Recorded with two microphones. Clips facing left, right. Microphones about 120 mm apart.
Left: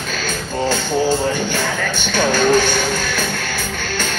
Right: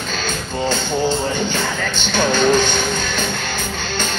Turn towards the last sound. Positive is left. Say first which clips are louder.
# left 1 dB
turn(degrees=-20)  # may be behind; listen again after turning